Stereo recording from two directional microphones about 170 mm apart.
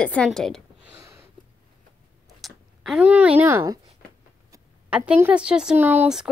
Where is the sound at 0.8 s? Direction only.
15° right (ahead or behind).